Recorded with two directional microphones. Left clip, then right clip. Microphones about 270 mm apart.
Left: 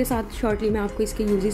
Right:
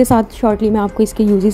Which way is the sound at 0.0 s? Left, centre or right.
Right.